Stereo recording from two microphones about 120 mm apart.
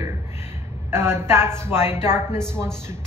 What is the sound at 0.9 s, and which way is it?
A woman's voice, 20° right (ahead or behind).